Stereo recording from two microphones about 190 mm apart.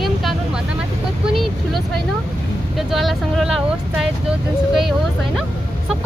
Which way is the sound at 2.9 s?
Centre (ahead or behind).